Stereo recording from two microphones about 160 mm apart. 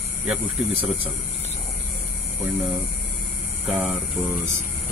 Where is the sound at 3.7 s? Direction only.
5° right (ahead or behind).